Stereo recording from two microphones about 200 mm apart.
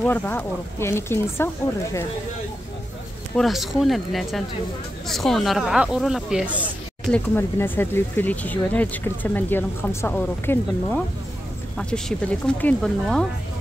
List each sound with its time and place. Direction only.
0.0 s speech: 10° left (ahead or behind)
3.3 s speech: centre (ahead or behind)
7.1 s speech: 10° left (ahead or behind)